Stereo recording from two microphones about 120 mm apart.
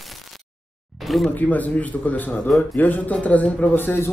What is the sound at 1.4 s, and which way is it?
Speech, 15° left (ahead or behind).